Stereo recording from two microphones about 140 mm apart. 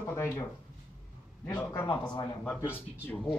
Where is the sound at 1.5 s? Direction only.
15° left (ahead or behind).